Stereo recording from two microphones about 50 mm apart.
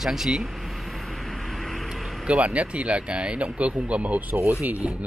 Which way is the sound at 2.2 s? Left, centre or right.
Right.